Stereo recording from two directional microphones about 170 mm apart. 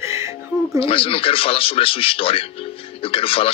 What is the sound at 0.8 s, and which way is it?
Speech, 35° left (ahead or behind).